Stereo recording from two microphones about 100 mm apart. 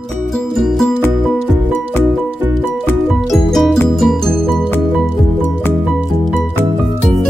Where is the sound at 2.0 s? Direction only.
20° right (ahead or behind).